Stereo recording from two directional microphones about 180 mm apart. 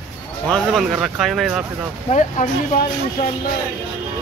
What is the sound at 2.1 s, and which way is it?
Speech, 45° left (ahead or behind).